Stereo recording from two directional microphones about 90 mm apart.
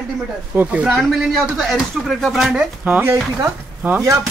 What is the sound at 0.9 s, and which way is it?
Speech, centre (ahead or behind).